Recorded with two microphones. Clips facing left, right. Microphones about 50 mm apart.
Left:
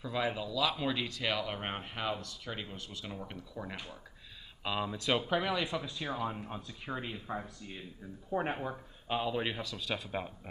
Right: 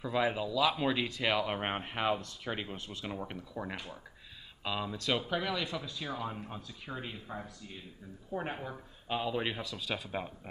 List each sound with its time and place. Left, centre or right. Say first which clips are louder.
0.0 s speech: right 3 dB; centre
4.6 s speech: left 1 dB; centre